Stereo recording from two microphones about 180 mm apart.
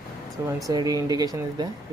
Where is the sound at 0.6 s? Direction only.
20° right (ahead or behind).